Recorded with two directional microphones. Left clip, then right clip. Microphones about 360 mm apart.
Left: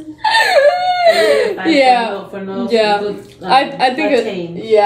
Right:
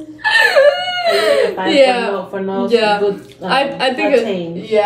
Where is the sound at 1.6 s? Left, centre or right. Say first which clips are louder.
Left 1 dB; centre.